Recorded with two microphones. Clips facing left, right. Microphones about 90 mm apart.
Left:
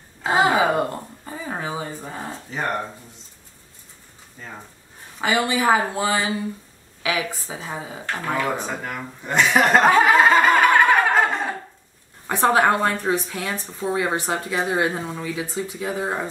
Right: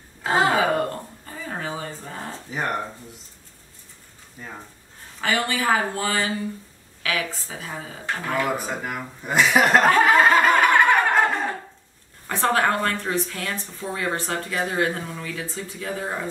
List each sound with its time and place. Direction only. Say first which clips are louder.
0.2 s a sound: left 2 dB; 10° left (ahead or behind)
2.5 s speech: even; 5° right (ahead or behind)
5.2 s speech: left 3 dB; 15° left (ahead or behind)
8.4 s speech: even; 5° right (ahead or behind)
12.3 s speech: left 4 dB; 15° left (ahead or behind)